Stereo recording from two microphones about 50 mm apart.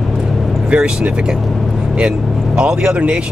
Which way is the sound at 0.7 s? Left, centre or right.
Right.